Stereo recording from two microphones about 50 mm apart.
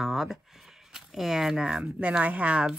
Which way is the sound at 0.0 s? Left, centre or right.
Centre.